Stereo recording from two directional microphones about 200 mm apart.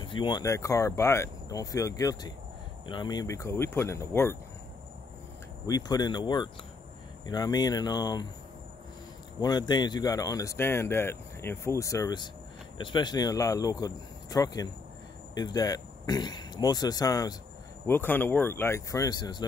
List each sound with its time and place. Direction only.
0.0 s speech: 25° left (ahead or behind)
5.7 s speech: 20° left (ahead or behind)
9.4 s speech: 20° left (ahead or behind)